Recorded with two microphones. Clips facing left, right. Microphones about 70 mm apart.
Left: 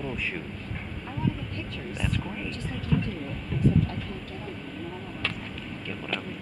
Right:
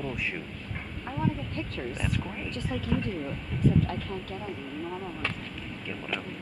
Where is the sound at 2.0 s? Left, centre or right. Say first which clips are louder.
Left 4 dB; centre.